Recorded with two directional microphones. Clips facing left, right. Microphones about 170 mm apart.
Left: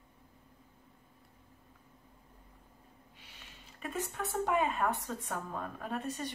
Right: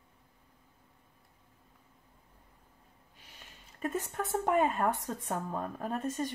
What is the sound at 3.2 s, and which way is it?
Speech, 45° right (ahead or behind).